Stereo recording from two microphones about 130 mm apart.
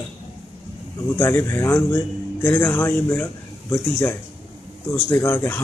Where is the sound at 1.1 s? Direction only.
20° left (ahead or behind).